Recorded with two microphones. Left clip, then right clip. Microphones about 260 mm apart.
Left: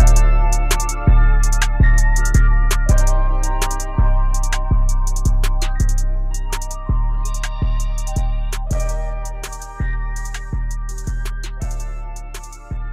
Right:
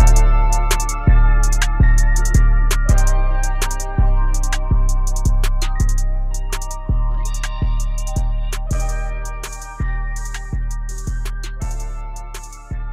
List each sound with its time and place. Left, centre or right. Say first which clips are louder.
0.0 s music: right 1 dB; centre